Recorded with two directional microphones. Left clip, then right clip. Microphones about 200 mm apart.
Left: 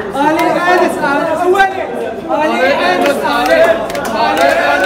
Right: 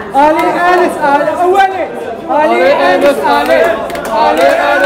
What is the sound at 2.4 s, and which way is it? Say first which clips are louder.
Chatter: right 3 dB; 45° right (ahead or behind).